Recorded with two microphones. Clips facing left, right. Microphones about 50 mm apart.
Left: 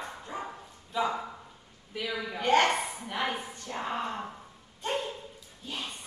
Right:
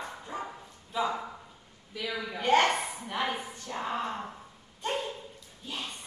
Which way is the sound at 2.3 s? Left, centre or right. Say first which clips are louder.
Even; centre.